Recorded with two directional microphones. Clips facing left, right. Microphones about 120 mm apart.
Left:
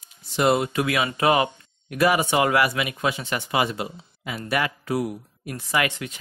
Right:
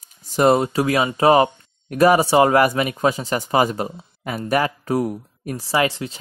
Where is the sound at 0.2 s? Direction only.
40° right (ahead or behind).